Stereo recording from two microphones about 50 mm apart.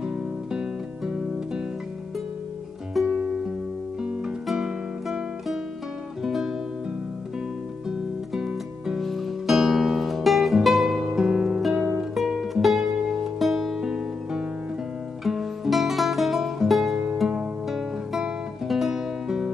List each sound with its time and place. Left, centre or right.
0.0 s music: centre
2.9 s music: centre
4.5 s music: centre
6.2 s music: centre
8.3 s music: centre
9.0 s music: centre
17.6 s guitar: centre
18.7 s music: centre